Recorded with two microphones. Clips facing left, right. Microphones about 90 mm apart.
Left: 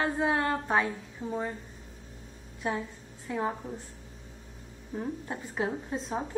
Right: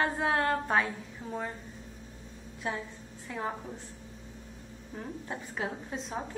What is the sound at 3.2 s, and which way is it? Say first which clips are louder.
Speech: left 4 dB; 10° left (ahead or behind).